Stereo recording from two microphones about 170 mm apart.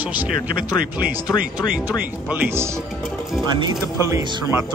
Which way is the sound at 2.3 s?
10° right (ahead or behind).